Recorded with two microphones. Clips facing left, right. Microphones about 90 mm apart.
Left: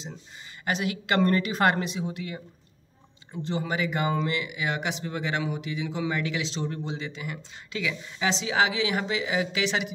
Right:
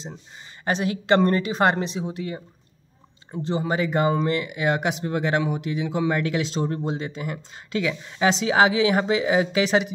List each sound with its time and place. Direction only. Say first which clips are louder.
0.7 s speech: right 6 dB; 30° right (ahead or behind)